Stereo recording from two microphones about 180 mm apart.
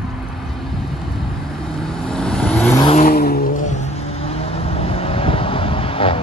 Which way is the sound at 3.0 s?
55° left (ahead or behind).